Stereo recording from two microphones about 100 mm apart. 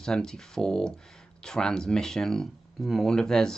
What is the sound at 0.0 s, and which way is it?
Speech, 5° left (ahead or behind).